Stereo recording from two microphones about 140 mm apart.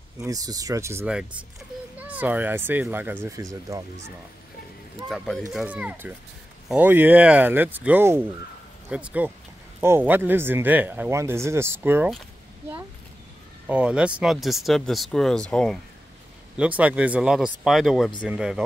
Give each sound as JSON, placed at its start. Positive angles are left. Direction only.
{"t": 0.2, "sound": "speech", "side_deg": -25}
{"t": 5.1, "sound": "speech", "side_deg": 0}
{"t": 13.7, "sound": "speech", "side_deg": -10}
{"t": 16.5, "sound": "speech", "side_deg": -10}